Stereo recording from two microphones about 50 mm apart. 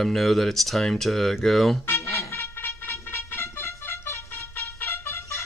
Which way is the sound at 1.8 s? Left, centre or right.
Left.